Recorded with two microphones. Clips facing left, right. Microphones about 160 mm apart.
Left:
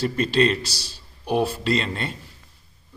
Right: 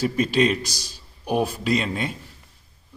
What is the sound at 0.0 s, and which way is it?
A man's voice, 10° right (ahead or behind).